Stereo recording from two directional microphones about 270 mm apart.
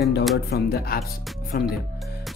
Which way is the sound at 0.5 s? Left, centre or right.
Left.